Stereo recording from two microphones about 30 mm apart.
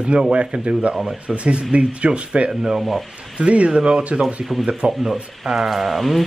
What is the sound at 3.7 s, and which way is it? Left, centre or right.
Speech, right.